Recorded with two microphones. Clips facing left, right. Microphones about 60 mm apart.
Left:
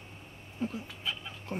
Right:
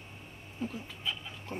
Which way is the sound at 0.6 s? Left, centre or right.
Centre.